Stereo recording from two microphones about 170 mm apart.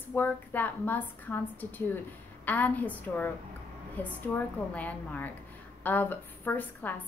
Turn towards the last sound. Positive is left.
turn(degrees=10)  # may be behind; listen again after turning